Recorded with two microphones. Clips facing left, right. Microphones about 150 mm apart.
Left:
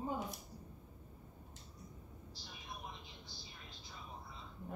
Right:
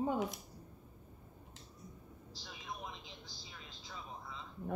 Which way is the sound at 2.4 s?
90° right.